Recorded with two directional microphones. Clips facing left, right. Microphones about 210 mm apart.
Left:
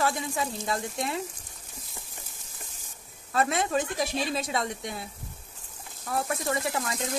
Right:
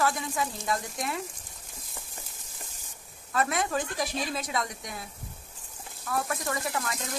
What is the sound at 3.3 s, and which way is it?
A woman's voice, 25° left (ahead or behind).